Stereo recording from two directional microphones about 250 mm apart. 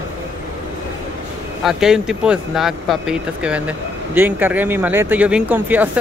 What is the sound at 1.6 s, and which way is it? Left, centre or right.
Speech, centre.